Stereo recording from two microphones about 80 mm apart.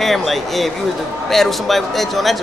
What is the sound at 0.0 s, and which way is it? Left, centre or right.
A man's voice, centre.